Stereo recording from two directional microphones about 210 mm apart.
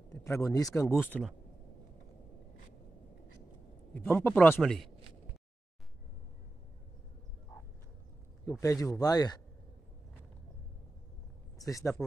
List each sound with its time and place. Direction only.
0.1 s speech: 15° left (ahead or behind)
3.9 s speech: 10° left (ahead or behind)
8.5 s speech: 15° left (ahead or behind)
11.5 s speech: 15° left (ahead or behind)